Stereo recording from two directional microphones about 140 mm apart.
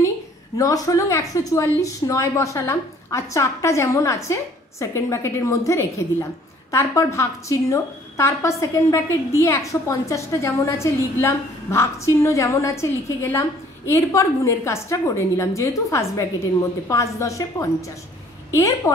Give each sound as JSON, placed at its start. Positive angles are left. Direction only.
{"t": 0.6, "sound": "a woman's voice", "side_deg": 25}